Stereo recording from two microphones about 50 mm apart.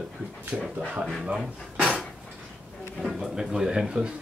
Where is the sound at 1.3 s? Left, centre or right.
Centre.